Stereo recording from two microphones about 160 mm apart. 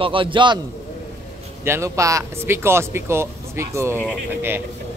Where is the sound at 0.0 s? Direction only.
30° right (ahead or behind).